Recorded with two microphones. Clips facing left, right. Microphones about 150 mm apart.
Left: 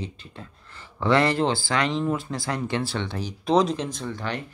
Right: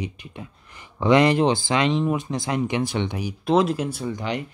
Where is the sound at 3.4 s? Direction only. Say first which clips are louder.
Right 1 dB; 5° right (ahead or behind).